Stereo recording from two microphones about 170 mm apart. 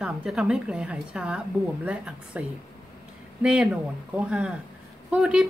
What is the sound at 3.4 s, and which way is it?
A woman's voice, 5° right (ahead or behind).